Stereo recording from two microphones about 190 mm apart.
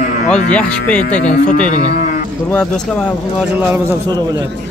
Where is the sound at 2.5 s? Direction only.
5° left (ahead or behind).